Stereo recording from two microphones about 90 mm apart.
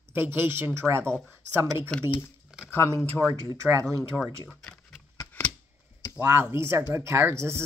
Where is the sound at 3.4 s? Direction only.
35° right (ahead or behind).